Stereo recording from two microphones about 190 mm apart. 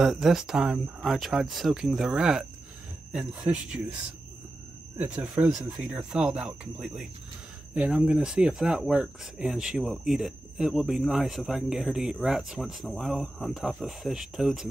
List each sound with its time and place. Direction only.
0.0 s speech: centre (ahead or behind)
4.9 s speech: 5° right (ahead or behind)